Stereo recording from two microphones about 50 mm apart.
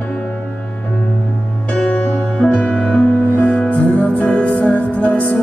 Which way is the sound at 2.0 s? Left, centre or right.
Centre.